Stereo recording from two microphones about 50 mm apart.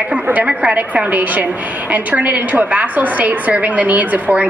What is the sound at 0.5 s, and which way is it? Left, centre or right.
Speech, centre.